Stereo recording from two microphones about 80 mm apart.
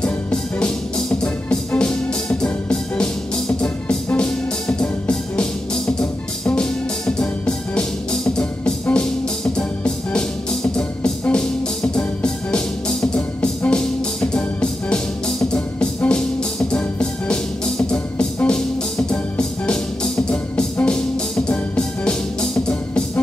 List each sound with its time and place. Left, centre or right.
0.0 s music: centre